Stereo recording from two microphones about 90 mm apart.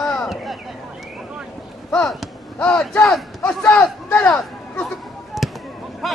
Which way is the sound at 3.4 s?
15° left (ahead or behind).